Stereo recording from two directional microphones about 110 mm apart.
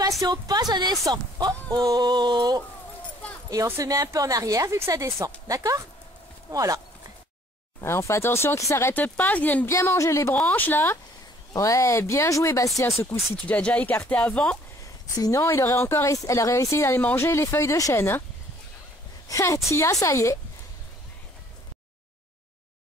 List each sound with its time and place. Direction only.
0.2 s a woman's voice: 35° right (ahead or behind)
3.4 s a woman's voice: 30° right (ahead or behind)
7.8 s speech: 25° left (ahead or behind)
9.7 s speech: 25° left (ahead or behind)
10.3 s speech: 15° left (ahead or behind)
11.5 s speech: 30° left (ahead or behind)
13.4 s speech: 10° left (ahead or behind)
15.1 s speech: 35° left (ahead or behind)
15.4 s speech: 25° left (ahead or behind)
19.2 s a woman's voice: 25° left (ahead or behind)